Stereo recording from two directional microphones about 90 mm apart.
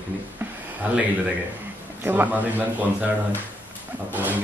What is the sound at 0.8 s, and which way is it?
Speech, 15° right (ahead or behind).